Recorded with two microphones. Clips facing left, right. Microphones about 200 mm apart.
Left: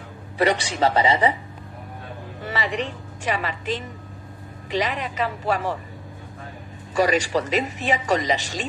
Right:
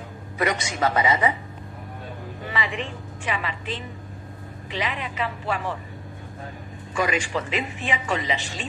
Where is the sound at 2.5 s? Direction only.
40° left (ahead or behind).